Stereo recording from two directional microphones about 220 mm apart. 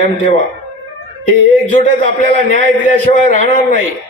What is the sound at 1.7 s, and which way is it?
A man's voice, 35° left (ahead or behind).